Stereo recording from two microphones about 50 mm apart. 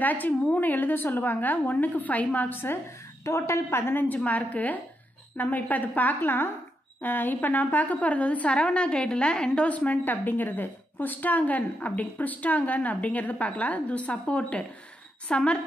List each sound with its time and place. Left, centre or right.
0.0 s a woman's voice: left
2.5 s a woman's voice: left
3.3 s a woman's voice: left
4.2 s a woman's voice: left
9.7 s a woman's voice: left